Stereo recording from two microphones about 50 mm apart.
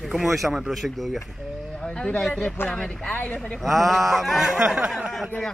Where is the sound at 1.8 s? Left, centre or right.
Left.